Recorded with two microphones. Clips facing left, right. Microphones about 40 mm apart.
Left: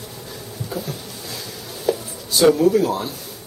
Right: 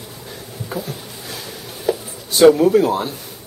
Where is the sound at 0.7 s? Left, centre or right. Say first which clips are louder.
Right 2 dB; right.